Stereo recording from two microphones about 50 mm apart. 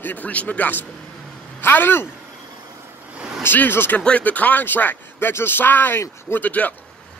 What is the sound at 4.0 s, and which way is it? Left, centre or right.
Speech, left.